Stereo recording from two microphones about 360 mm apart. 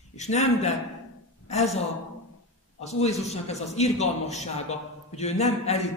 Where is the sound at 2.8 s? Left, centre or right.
Centre.